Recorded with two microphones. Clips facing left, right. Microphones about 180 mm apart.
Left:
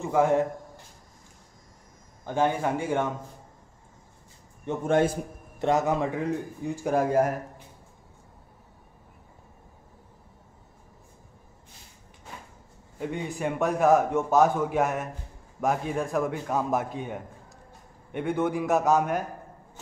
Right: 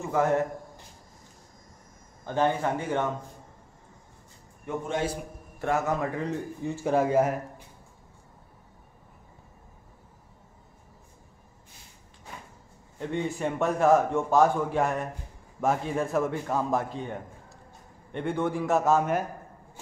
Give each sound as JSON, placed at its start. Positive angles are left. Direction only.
{"t": 0.1, "sound": "a man's voice", "side_deg": 10}
{"t": 2.2, "sound": "a man's voice", "side_deg": 10}
{"t": 4.8, "sound": "a man's voice", "side_deg": 55}
{"t": 5.6, "sound": "a man's voice", "side_deg": 20}
{"t": 13.4, "sound": "a man's voice", "side_deg": 0}
{"t": 18.2, "sound": "a man's voice", "side_deg": 0}